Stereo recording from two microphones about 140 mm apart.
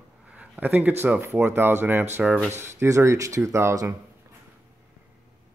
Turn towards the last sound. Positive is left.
turn(degrees=-20)  # may be behind; listen again after turning